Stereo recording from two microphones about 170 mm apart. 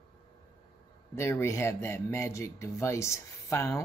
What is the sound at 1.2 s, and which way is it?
Speech, 15° left (ahead or behind).